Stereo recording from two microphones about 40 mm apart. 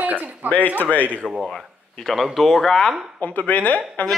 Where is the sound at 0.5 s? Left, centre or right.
Left.